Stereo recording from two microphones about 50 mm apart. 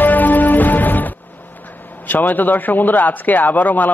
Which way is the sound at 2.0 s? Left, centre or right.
Left.